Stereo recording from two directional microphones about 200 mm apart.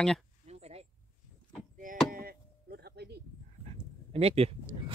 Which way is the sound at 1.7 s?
45° right (ahead or behind).